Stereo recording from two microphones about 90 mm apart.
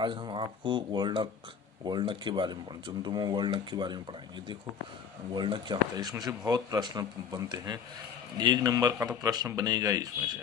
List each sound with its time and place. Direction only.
0.0 s speech: 65° right (ahead or behind)
5.3 s speech: 55° right (ahead or behind); by 10.0 s 40° right (ahead or behind)